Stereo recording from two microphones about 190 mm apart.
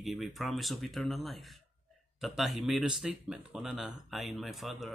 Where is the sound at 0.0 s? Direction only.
Centre (ahead or behind).